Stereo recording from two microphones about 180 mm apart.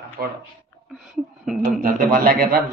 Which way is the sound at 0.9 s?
Centre (ahead or behind).